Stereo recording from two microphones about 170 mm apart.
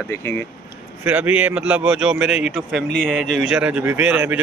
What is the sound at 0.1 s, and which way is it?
Speech, 15° left (ahead or behind).